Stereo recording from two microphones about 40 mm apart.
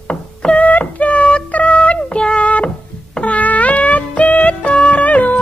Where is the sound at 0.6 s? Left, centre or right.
Left.